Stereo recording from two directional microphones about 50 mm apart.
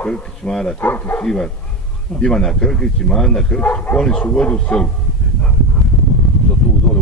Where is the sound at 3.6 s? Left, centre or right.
Left.